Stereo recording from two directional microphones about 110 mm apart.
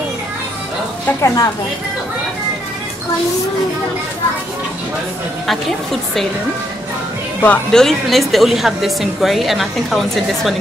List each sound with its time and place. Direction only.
1.2 s a woman's voice: 25° left (ahead or behind)
7.4 s speech: 5° left (ahead or behind)